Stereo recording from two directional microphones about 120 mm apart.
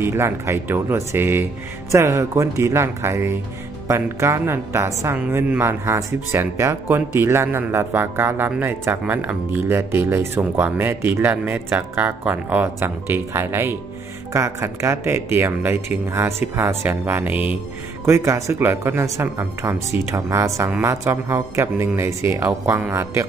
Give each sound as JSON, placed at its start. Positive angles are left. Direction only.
{"t": 0.0, "sound": "a woman's voice", "side_deg": -20}
{"t": 18.0, "sound": "a woman's voice", "side_deg": -25}